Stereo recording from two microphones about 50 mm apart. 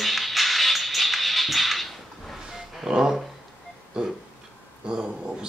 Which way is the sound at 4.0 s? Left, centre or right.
Centre.